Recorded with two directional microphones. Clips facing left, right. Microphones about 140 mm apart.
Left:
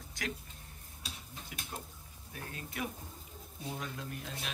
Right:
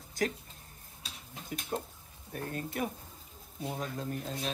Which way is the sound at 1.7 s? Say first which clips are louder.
Right 9 dB; 40° right (ahead or behind).